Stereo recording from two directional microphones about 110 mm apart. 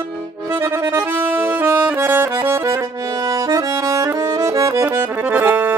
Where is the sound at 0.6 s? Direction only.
25° right (ahead or behind).